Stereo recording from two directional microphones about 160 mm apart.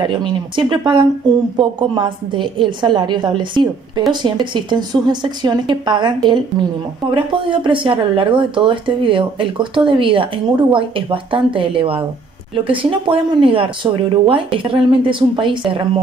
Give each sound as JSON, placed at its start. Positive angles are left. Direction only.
{"t": 0.0, "sound": "a woman's voice", "side_deg": -30}